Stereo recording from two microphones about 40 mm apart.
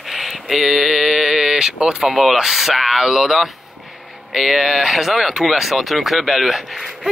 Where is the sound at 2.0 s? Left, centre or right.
Centre.